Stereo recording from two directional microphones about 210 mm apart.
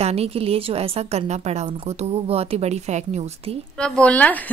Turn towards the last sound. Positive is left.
turn(degrees=5)  # may be behind; listen again after turning